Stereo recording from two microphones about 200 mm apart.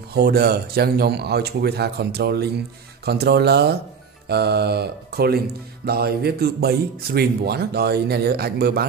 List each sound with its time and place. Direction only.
0.1 s speech: 50° right (ahead or behind)